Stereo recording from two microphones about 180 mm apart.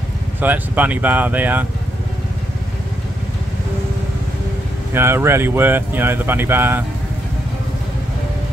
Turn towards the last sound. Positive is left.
turn(degrees=-10)  # may be behind; listen again after turning